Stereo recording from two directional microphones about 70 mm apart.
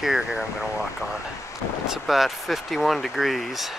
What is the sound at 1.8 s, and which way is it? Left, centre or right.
Speech, centre.